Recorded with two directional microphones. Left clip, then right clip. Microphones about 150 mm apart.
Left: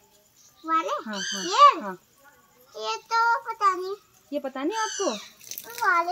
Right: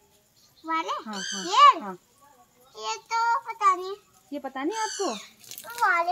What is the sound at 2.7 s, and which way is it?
Child singing, 35° left (ahead or behind).